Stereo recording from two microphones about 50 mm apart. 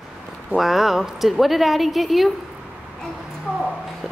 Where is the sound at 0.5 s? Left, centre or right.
Centre.